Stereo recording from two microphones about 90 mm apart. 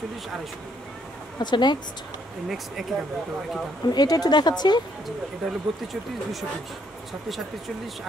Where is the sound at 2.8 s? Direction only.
Centre (ahead or behind).